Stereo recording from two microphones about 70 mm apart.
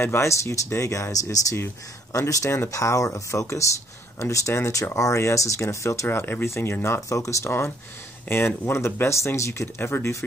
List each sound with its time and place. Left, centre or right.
0.0 s speech: left
1.3 s speech: left
6.0 s speech: left